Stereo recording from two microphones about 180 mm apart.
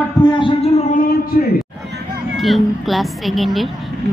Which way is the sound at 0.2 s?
25° left (ahead or behind).